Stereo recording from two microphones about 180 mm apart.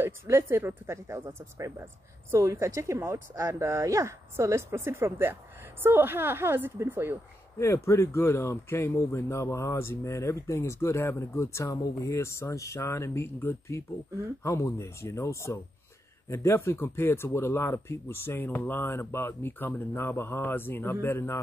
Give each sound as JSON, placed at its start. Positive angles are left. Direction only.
{"t": 0.0, "sound": "speech", "side_deg": -15}
{"t": 7.5, "sound": "speech", "side_deg": 15}